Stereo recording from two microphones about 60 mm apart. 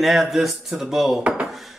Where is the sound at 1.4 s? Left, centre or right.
Centre.